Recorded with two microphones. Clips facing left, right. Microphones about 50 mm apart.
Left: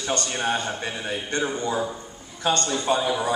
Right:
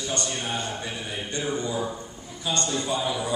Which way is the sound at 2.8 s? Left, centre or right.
Left.